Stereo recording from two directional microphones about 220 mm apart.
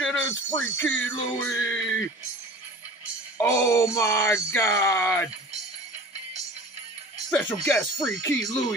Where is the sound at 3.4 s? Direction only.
15° left (ahead or behind).